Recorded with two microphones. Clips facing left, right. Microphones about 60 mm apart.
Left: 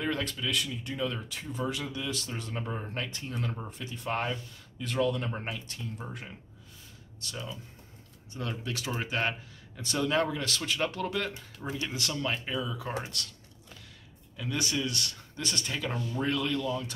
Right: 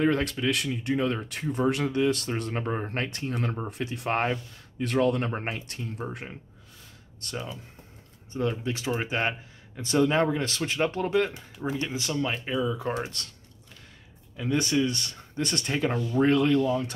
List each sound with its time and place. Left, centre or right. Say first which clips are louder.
0.0 s speech: right 7 dB; right
3.7 s speech: right 7 dB; right
4.1 s speech: right 5 dB; right
7.2 s speech: right 5 dB; right
8.3 s speech: right 7 dB; right
11.5 s speech: right 5 dB; centre; by 13.3 s right
14.3 s speech: right 7 dB; right
15.4 s speech: right 6 dB; right